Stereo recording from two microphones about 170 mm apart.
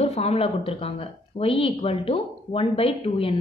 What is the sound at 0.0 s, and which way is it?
A woman's voice, 35° left (ahead or behind).